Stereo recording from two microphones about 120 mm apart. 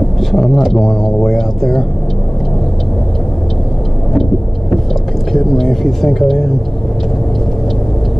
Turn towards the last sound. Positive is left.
turn(degrees=0)  # may be behind; listen again after turning